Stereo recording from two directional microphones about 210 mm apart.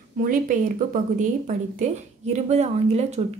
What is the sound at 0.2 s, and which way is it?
A woman's voice, 40° right (ahead or behind).